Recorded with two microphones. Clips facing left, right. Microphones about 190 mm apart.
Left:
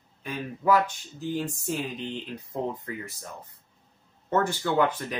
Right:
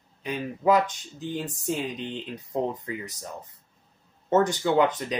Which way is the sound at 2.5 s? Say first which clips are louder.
Right 3 dB; 20° right (ahead or behind).